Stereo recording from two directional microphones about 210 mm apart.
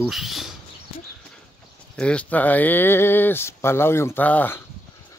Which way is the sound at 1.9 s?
5° left (ahead or behind).